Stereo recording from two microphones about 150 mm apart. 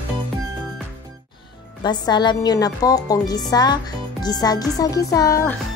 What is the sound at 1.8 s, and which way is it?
Speech, 30° left (ahead or behind).